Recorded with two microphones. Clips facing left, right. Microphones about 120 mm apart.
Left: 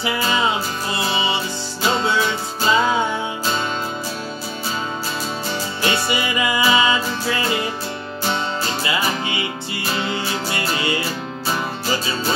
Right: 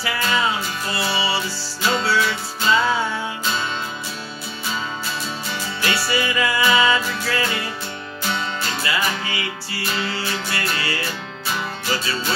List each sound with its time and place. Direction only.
0.0 s music: 25° left (ahead or behind)
5.8 s music: 25° left (ahead or behind)